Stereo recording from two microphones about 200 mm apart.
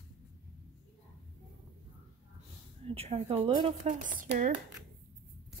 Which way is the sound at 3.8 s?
40° right (ahead or behind).